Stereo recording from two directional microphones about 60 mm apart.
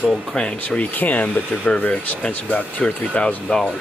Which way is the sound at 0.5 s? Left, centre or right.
Left.